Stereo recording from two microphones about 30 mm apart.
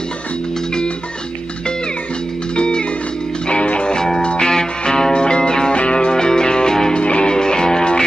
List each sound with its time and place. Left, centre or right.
2.5 s music: left
7.0 s music: left